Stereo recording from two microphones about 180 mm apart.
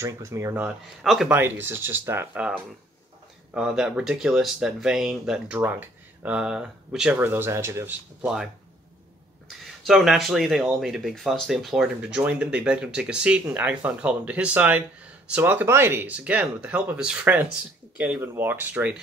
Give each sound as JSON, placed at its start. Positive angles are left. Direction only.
{"t": 0.0, "sound": "speech", "side_deg": -15}
{"t": 3.5, "sound": "speech", "side_deg": -5}
{"t": 9.8, "sound": "speech", "side_deg": 0}